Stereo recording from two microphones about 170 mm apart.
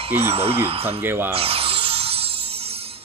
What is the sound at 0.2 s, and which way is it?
Speech, 35° right (ahead or behind).